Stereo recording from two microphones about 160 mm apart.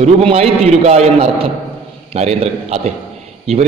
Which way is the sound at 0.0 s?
40° right (ahead or behind).